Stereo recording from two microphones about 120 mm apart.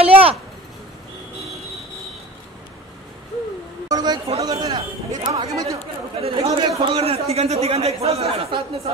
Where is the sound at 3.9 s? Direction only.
35° right (ahead or behind).